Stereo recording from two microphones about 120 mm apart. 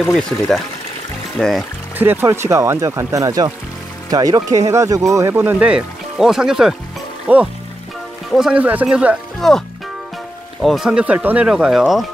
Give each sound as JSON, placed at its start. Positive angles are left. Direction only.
{"t": 0.0, "sound": "speech", "side_deg": 5}
{"t": 2.0, "sound": "speech", "side_deg": -15}
{"t": 10.6, "sound": "speech", "side_deg": 0}